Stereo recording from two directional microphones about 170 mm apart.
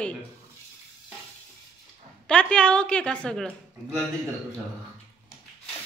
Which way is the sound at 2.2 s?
5° left (ahead or behind).